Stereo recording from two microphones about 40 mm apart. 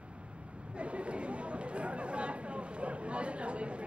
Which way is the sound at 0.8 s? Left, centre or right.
Right.